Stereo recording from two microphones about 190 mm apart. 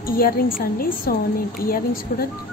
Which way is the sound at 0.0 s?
50° left (ahead or behind).